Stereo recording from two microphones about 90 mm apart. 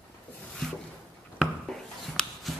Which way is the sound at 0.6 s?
5° left (ahead or behind).